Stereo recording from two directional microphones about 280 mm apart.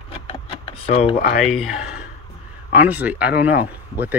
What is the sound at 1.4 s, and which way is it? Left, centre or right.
Speech, centre.